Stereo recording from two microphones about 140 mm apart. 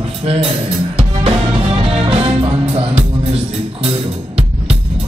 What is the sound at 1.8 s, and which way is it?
Music, 45° right (ahead or behind).